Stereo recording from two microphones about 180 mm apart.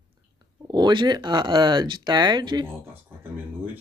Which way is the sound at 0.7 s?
25° right (ahead or behind).